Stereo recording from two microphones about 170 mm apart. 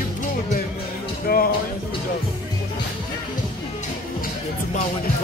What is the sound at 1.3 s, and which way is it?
Speech, 60° left (ahead or behind).